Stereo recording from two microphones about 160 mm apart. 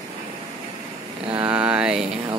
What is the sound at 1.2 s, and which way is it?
Mantra, 35° right (ahead or behind).